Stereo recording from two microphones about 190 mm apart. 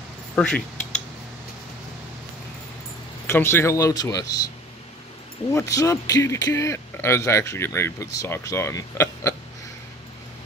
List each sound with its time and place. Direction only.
0.4 s speech: 5° left (ahead or behind)
3.3 s speech: 10° left (ahead or behind)
5.5 s speech: 15° left (ahead or behind)